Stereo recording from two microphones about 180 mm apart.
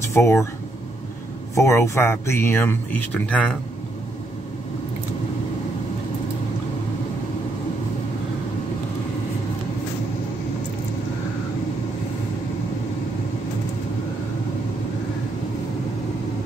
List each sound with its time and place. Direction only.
0.1 s speech: 15° left (ahead or behind)
1.5 s speech: 15° left (ahead or behind)